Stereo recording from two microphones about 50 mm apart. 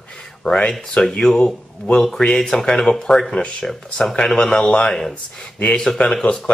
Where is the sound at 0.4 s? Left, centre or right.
Centre.